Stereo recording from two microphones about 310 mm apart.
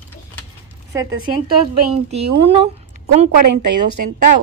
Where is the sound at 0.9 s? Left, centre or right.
Centre.